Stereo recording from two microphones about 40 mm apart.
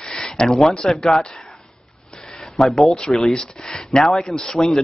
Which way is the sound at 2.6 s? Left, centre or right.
Centre.